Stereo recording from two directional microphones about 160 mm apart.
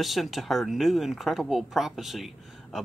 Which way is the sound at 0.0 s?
Centre (ahead or behind).